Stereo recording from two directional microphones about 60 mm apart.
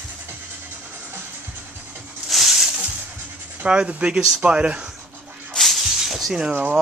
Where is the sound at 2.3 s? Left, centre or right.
Centre.